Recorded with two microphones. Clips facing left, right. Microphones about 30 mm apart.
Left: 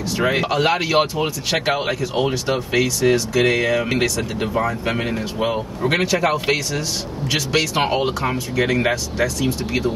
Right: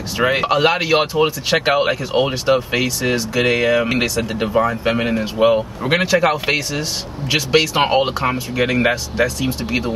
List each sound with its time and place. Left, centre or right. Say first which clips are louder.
0.2 s speech: right 4 dB; centre